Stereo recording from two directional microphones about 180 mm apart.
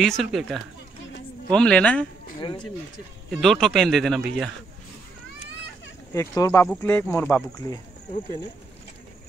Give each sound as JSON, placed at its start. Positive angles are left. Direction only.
{"t": 0.0, "sound": "speech", "side_deg": 0}
{"t": 3.3, "sound": "speech", "side_deg": 0}
{"t": 6.1, "sound": "speech", "side_deg": 20}